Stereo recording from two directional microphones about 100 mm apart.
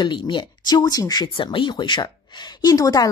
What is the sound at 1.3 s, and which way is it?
A woman's voice, 55° left (ahead or behind).